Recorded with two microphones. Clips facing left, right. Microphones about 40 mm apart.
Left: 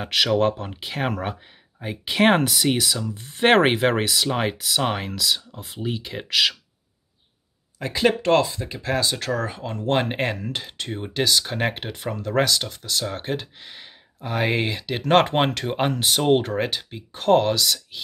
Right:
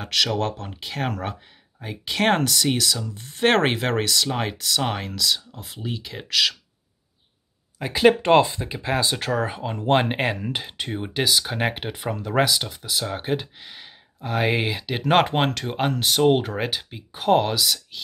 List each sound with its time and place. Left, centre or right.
0.0 s speech: centre
7.8 s speech: centre
8.2 s speech: right; by 18.0 s centre